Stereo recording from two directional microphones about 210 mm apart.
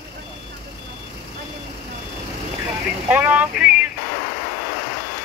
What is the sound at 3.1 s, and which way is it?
Speech, 10° right (ahead or behind).